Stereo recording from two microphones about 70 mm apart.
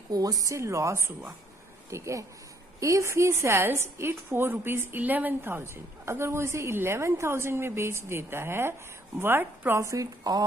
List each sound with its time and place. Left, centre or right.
0.1 s a woman's voice: right
9.8 s a woman's voice: right
10.3 s speech: right